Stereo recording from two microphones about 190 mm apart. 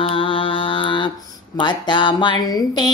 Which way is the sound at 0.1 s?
25° left (ahead or behind).